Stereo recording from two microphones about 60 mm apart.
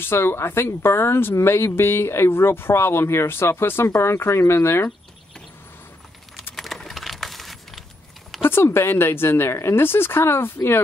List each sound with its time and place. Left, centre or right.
0.0 s speech: left
6.5 s computer keyboard: centre
8.4 s a sound: left
8.6 s speech: left